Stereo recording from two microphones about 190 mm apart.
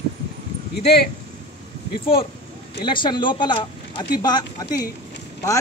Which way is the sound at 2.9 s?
25° left (ahead or behind).